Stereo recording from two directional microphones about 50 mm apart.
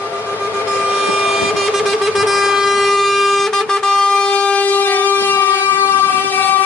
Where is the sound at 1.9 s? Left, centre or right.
Centre.